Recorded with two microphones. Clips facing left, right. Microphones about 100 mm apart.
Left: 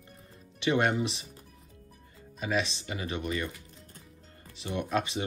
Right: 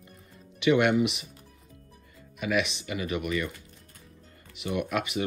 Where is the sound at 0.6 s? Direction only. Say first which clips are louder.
Right 5 dB; 35° left (ahead or behind).